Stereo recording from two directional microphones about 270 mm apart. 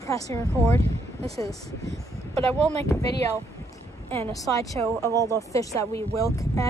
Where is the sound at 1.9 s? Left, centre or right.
Right.